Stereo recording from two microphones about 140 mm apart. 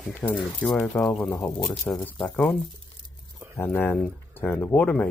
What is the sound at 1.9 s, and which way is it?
Speech, 5° left (ahead or behind).